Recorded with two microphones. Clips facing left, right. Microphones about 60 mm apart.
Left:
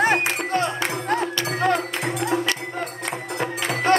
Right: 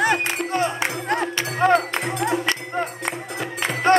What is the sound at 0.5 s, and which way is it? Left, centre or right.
Music, centre.